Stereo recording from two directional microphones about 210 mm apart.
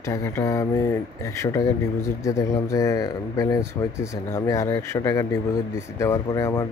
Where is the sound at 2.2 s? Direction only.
15° left (ahead or behind).